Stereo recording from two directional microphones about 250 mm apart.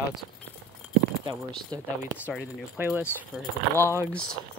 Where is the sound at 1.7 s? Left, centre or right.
Centre.